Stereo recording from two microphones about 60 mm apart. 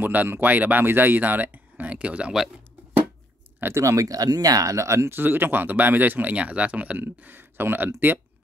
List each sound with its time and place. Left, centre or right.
0.0 s speech: right
3.7 s speech: right